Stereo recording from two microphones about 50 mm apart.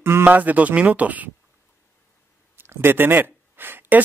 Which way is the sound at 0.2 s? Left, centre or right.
Right.